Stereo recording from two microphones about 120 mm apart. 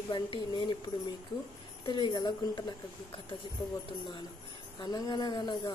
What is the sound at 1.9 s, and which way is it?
Speech, 40° left (ahead or behind).